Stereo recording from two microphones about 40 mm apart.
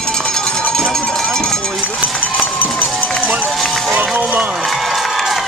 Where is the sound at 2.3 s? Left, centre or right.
Left.